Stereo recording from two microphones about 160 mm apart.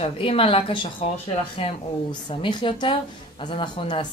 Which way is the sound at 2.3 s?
30° left (ahead or behind).